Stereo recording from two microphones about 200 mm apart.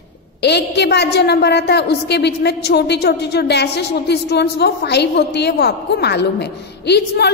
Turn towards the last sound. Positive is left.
turn(degrees=55)  # may be behind; listen again after turning